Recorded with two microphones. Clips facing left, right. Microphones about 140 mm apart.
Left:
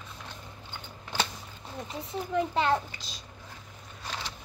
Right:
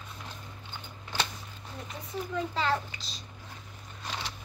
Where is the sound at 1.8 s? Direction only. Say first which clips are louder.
Left 2 dB; 20° left (ahead or behind).